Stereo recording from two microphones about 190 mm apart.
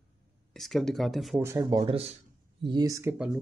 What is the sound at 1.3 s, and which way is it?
Speech, 15° right (ahead or behind).